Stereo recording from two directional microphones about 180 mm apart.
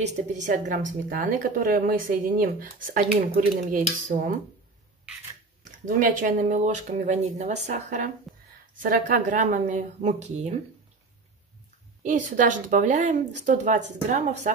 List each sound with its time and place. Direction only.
0.0 s a woman's voice: 40° right (ahead or behind)
5.9 s a woman's voice: 50° right (ahead or behind)
12.0 s a woman's voice: 45° right (ahead or behind)